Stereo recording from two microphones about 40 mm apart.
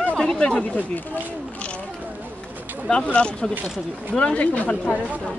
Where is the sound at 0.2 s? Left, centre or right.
Centre.